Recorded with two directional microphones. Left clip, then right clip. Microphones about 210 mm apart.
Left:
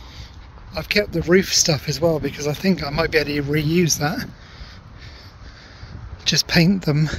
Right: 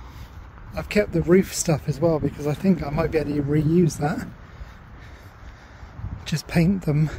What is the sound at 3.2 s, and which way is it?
Speech, 20° left (ahead or behind).